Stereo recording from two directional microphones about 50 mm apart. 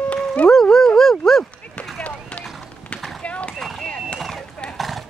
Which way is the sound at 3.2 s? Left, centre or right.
Left.